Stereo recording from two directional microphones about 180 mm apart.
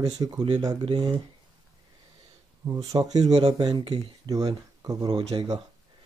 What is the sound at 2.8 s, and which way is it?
Speech, 20° right (ahead or behind).